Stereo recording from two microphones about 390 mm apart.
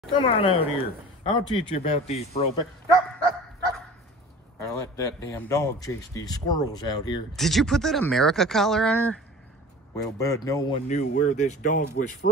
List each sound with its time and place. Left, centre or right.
0.1 s speech: centre
4.6 s speech: centre